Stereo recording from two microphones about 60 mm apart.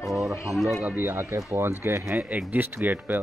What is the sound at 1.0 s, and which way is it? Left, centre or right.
Speech, right.